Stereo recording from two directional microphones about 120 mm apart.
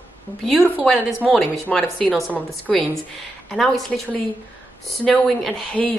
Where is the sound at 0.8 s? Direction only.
5° left (ahead or behind).